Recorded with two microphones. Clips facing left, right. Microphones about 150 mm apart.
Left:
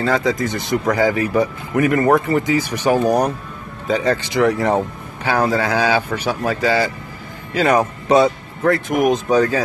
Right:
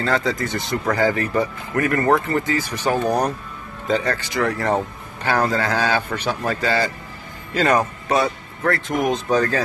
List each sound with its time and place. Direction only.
0.0 s speech: 10° left (ahead or behind)